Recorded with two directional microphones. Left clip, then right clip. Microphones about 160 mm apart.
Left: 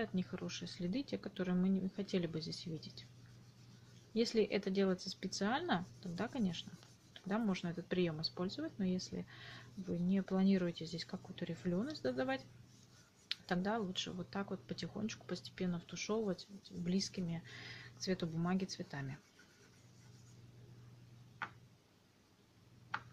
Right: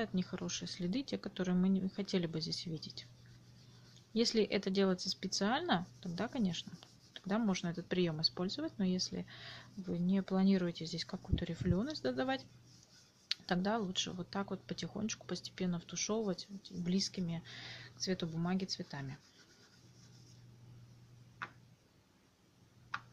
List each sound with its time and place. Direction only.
0.0 s speech: 20° right (ahead or behind)
4.1 s speech: 20° right (ahead or behind)